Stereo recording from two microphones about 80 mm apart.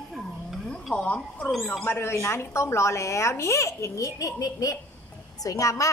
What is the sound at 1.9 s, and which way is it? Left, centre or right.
A woman's voice, left.